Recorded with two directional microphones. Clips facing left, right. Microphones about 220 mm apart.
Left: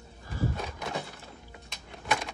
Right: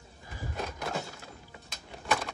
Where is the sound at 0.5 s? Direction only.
Centre (ahead or behind).